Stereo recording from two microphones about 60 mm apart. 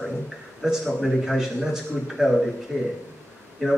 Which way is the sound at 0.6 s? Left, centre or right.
Centre.